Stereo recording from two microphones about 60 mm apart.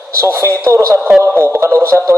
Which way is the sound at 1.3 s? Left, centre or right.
Right.